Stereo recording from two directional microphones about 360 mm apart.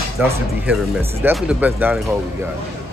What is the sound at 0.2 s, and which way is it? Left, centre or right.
Speech, centre.